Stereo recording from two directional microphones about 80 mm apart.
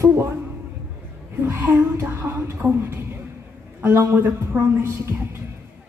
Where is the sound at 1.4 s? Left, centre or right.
Right.